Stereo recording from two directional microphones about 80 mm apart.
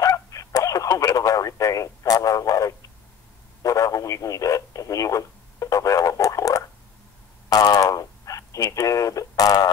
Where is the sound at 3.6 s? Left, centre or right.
Left.